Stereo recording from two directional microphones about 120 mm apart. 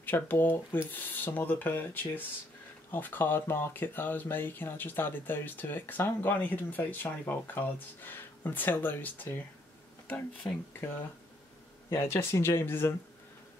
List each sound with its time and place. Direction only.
0.0 s speech: 15° left (ahead or behind)
11.9 s speech: 20° left (ahead or behind)